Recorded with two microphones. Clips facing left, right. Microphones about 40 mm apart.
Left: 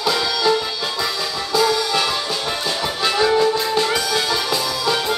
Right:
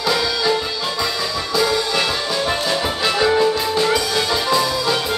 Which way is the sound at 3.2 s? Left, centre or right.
Centre.